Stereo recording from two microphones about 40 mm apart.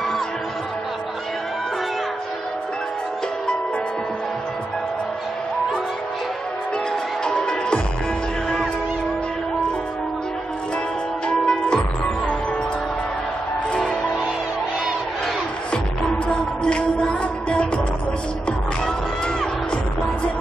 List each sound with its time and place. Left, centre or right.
7.2 s music: left
11.2 s music: left
16.6 s music: left